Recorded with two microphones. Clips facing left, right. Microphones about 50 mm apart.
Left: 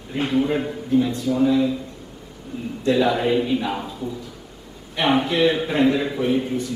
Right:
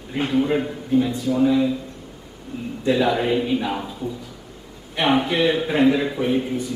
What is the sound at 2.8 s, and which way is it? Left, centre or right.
A man's voice, centre.